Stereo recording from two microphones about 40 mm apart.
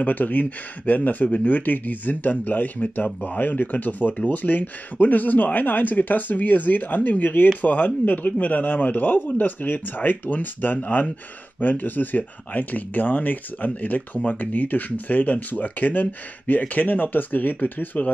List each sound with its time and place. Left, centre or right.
0.0 s speech: left